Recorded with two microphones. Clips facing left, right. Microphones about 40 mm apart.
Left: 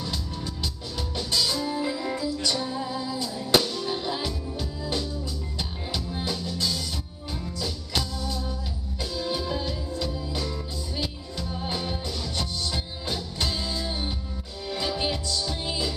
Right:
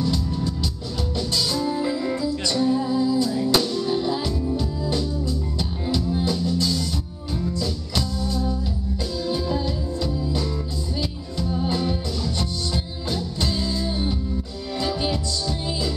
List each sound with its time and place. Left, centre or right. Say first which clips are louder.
0.4 s music: right 6 dB; centre